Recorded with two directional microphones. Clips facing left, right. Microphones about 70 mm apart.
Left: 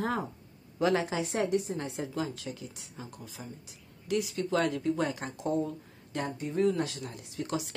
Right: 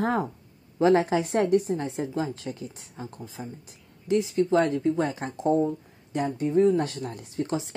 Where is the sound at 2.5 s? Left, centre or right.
Right.